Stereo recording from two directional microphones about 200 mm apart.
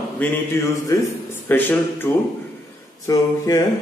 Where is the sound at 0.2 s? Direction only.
10° left (ahead or behind).